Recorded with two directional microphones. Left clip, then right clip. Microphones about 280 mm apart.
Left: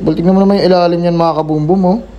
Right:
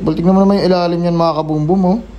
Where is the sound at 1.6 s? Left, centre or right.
Centre.